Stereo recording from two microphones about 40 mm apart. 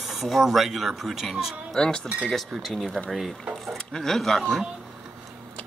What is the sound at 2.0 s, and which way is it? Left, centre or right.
Speech, centre.